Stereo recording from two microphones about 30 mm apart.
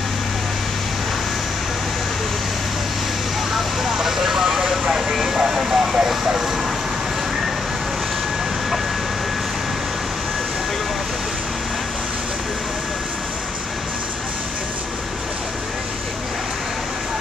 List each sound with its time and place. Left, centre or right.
3.5 s vehicle: centre